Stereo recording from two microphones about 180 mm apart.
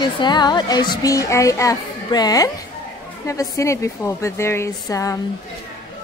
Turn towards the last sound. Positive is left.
turn(degrees=20)  # may be behind; listen again after turning